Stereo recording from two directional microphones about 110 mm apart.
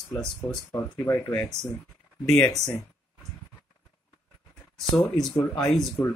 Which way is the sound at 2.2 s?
10° left (ahead or behind).